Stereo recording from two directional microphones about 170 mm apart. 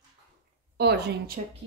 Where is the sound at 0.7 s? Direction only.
75° right (ahead or behind).